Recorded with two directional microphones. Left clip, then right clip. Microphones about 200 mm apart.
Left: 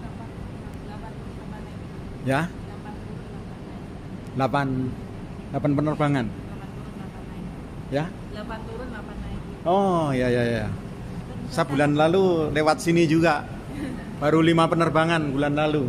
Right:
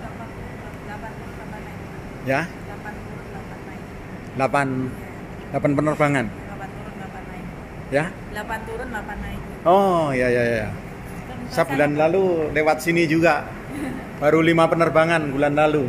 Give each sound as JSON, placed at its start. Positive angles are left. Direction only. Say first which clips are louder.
{"t": 4.4, "sound": "a man's voice", "louder": "right 3 dB", "side_deg": 5}
{"t": 7.9, "sound": "a man's voice", "louder": "right 6 dB", "side_deg": 0}
{"t": 9.8, "sound": "a man's voice", "louder": "right 4 dB", "side_deg": 5}